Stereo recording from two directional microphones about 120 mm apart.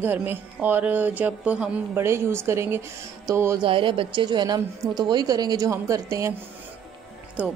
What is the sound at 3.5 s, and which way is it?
A woman's voice, 45° right (ahead or behind).